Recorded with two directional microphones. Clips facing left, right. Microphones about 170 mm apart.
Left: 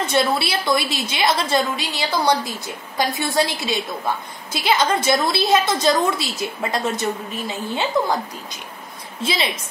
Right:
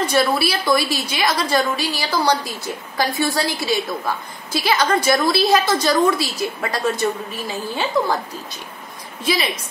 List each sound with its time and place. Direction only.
0.0 s a woman's voice: 25° left (ahead or behind)
9.2 s a woman's voice: 25° left (ahead or behind)